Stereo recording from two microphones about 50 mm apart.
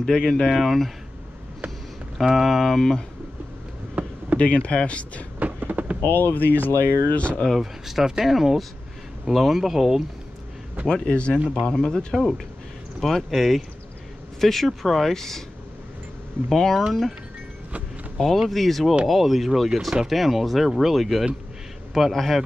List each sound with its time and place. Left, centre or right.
0.0 s speech: centre
0.6 s speech: centre
2.1 s speech: centre
4.0 s basketball bounce: right
4.4 s speech: left
5.4 s a sound: right
6.0 s speech: left
7.2 s speech: left
7.4 s speech: centre
11.1 s speech: left; by 15.4 s centre
16.4 s speech: centre
18.1 s speech: centre